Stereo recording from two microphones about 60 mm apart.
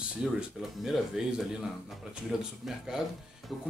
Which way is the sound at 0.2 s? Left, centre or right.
Centre.